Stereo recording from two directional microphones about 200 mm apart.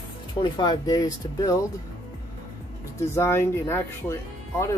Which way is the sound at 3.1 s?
15° left (ahead or behind).